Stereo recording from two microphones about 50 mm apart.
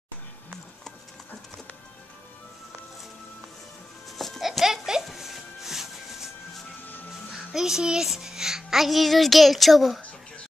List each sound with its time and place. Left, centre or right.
4.2 s music: centre
6.8 s music: left
7.3 s music: centre
8.1 s a woman's voice: centre